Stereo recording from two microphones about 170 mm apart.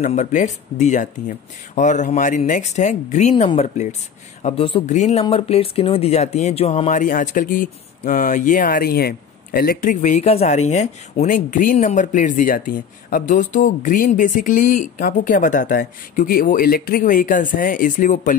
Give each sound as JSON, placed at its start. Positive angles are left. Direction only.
{"t": 0.0, "sound": "speech", "side_deg": 45}